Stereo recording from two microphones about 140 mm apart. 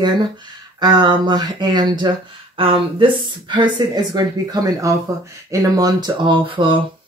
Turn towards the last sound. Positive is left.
turn(degrees=-35)  # may be behind; listen again after turning